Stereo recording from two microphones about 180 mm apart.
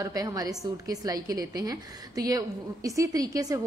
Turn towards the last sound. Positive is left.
turn(degrees=-20)  # may be behind; listen again after turning